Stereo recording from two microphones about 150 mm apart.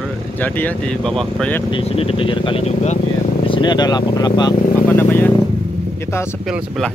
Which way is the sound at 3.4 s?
30° left (ahead or behind).